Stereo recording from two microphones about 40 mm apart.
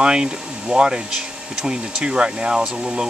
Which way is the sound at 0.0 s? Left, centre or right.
Right.